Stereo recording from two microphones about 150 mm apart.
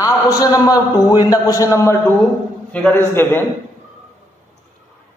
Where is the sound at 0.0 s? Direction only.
25° left (ahead or behind).